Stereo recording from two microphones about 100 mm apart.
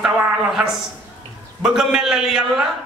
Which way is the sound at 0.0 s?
5° right (ahead or behind).